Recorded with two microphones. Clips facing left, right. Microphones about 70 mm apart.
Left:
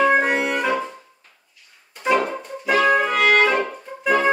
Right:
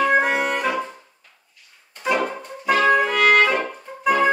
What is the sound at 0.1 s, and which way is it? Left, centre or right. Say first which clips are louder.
Music: even; centre.